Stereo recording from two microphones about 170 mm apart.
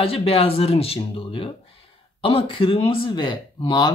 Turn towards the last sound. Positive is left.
turn(degrees=25)  # may be behind; listen again after turning